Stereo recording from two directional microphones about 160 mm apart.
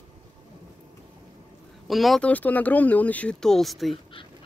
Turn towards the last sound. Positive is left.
turn(degrees=0)  # may be behind; listen again after turning